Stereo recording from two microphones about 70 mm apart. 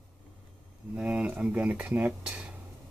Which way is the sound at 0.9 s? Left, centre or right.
Centre.